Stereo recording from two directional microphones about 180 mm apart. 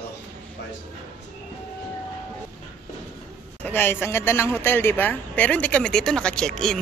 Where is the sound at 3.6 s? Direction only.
10° left (ahead or behind).